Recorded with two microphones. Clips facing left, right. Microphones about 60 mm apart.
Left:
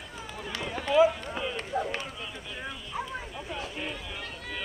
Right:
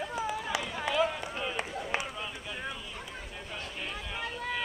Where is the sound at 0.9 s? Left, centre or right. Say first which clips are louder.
Left 8 dB; centre.